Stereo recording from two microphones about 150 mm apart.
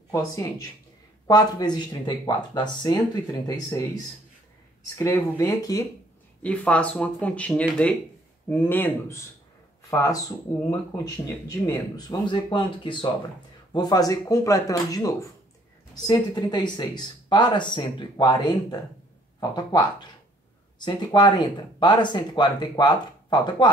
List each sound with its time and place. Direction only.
0.1 s speech: 20° left (ahead or behind)
6.4 s speech: 10° left (ahead or behind); by 23.7 s 30° left (ahead or behind)